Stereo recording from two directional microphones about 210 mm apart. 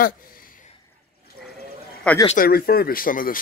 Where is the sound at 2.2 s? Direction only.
45° left (ahead or behind).